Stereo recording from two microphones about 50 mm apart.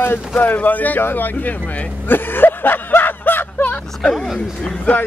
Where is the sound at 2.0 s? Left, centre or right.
Left.